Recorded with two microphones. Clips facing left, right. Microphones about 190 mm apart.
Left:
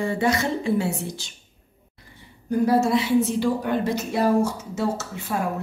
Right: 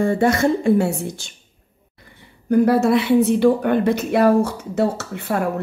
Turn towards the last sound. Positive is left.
turn(degrees=-60)  # may be behind; listen again after turning